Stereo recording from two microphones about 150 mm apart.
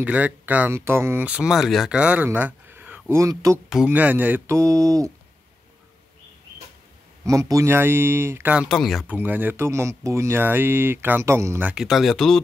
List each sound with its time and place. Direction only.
0.0 s speech: 10° right (ahead or behind)
3.7 s speech: 10° right (ahead or behind)
7.2 s speech: 20° right (ahead or behind)
8.6 s speech: centre (ahead or behind)
9.0 s speech: 10° right (ahead or behind)
11.7 s speech: centre (ahead or behind)